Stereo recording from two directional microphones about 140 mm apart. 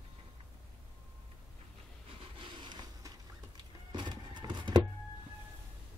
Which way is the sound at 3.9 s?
35° right (ahead or behind).